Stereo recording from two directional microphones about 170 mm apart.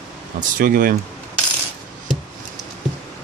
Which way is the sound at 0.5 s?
55° right (ahead or behind).